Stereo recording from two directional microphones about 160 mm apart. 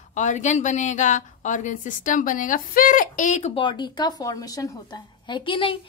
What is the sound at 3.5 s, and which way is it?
A woman's voice, 30° left (ahead or behind).